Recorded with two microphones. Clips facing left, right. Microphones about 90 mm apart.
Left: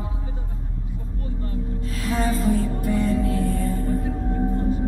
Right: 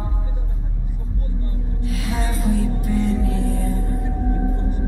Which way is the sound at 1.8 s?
40° left (ahead or behind).